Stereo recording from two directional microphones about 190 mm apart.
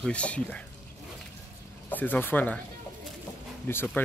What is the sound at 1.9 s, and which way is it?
Speech, 10° left (ahead or behind).